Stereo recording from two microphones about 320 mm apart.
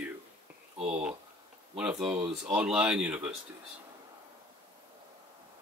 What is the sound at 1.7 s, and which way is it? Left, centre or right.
Speech, centre.